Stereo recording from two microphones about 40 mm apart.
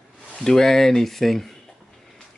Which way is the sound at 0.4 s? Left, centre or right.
Centre.